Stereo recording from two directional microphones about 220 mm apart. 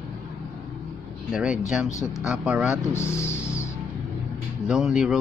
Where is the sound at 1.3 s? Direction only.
5° right (ahead or behind).